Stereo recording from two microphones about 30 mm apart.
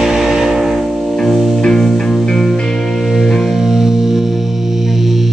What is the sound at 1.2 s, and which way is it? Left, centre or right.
Music, centre.